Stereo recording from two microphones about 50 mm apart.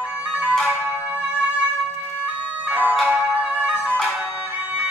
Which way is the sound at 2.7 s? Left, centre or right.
Right.